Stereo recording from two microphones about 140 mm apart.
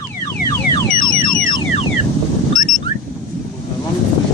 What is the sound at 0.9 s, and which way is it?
Car alarm, 80° left.